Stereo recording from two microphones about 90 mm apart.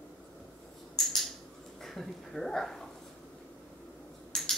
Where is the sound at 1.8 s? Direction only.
Centre (ahead or behind).